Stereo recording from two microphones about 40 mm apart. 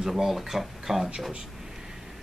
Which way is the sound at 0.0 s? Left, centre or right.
Centre.